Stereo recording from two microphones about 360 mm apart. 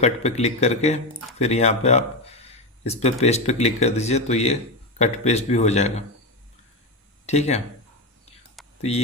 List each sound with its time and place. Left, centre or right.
0.0 s speech: centre
7.2 s speech: centre
8.6 s whispering: centre